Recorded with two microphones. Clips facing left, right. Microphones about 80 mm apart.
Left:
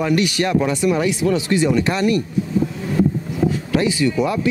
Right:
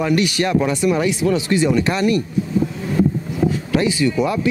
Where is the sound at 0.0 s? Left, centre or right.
Centre.